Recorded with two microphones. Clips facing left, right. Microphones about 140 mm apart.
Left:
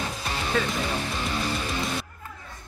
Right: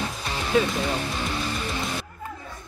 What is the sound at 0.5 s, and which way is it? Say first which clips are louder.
Speech: right 6 dB; 15° right (ahead or behind).